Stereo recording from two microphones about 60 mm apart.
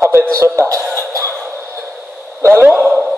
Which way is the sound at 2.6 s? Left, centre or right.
Right.